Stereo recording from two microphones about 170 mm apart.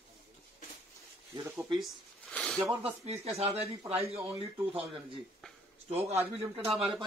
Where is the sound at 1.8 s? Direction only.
Centre (ahead or behind).